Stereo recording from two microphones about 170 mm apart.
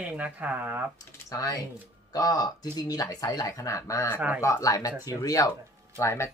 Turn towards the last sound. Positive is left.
turn(degrees=15)  # may be behind; listen again after turning